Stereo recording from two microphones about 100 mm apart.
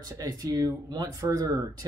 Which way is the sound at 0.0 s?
35° right (ahead or behind).